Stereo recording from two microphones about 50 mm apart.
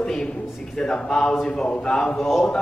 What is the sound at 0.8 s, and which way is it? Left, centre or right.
Speech, centre.